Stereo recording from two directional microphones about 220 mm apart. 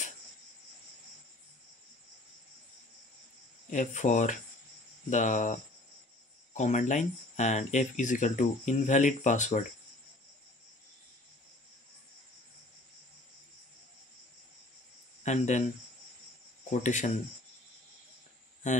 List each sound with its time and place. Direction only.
3.7 s speech: 35° left (ahead or behind)
15.2 s speech: 30° left (ahead or behind)
16.8 s speech: 35° left (ahead or behind)
18.6 s speech: 35° left (ahead or behind)